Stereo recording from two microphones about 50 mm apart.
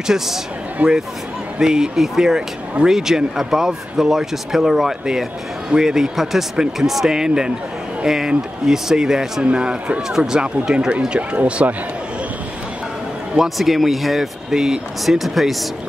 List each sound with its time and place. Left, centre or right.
0.0 s speech: centre
0.8 s speech: right
1.6 s speech: centre
13.6 s speech: centre